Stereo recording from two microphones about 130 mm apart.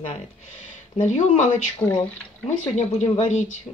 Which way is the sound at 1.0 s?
65° left (ahead or behind).